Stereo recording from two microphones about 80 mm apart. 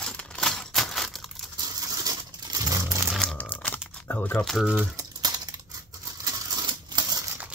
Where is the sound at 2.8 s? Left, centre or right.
Right.